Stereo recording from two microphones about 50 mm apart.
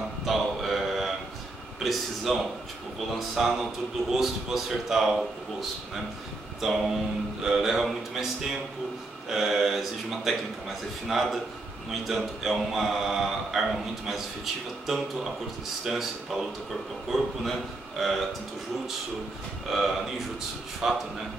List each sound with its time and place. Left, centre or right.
0.2 s a sound: centre
3.2 s speech: centre
6.6 s speech: centre
19.7 s speech: centre
20.8 s speech: centre